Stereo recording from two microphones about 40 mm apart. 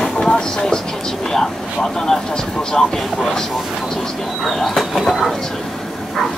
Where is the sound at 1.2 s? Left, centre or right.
Centre.